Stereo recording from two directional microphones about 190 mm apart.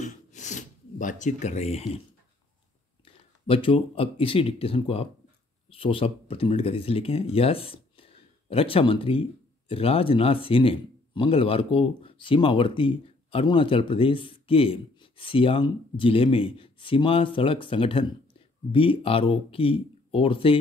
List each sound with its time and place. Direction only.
0.0 s gasp: 40° left (ahead or behind)
3.1 s speech: 30° left (ahead or behind)